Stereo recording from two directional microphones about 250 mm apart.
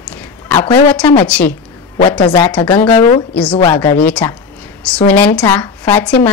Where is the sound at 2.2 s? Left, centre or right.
Centre.